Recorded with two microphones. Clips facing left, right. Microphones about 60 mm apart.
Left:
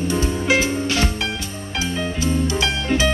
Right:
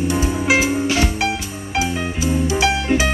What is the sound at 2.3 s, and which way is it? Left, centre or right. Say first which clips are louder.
Music: right 4 dB; centre.